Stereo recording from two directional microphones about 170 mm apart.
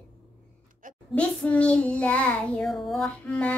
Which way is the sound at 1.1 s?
5° left (ahead or behind).